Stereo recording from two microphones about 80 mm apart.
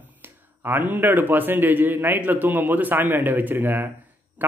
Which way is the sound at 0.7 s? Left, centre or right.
Right.